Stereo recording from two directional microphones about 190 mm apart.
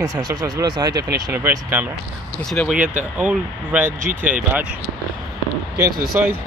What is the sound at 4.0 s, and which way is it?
Speech, 45° right (ahead or behind).